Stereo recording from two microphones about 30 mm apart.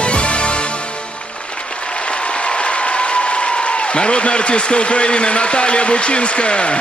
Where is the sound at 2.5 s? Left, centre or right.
Left.